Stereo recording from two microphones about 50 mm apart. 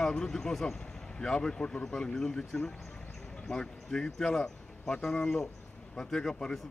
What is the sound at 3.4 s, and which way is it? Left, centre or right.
Speech, centre.